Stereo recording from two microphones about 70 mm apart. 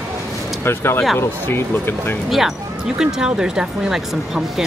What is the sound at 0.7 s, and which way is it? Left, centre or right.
Speech, left.